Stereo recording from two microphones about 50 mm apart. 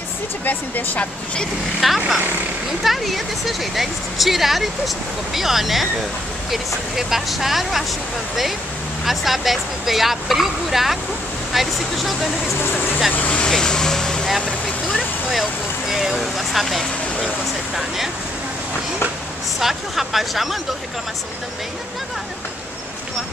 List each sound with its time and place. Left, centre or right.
0.5 s speech: left
1.8 s speech: centre
9.0 s speech: centre
13.5 s vehicle: centre
15.9 s speech: centre
19.6 s speech: centre